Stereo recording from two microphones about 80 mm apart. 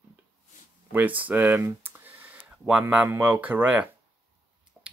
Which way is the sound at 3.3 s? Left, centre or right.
Right.